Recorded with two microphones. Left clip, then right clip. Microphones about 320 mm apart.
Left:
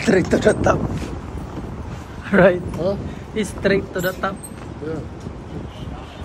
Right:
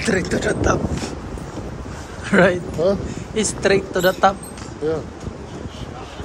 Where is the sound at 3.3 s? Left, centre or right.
Centre.